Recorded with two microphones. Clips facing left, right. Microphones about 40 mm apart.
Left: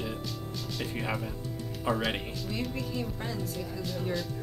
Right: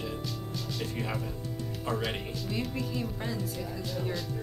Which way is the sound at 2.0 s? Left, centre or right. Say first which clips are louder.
Left 1 dB; centre.